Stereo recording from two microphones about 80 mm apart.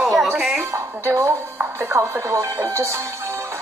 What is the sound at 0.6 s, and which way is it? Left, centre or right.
Music, right.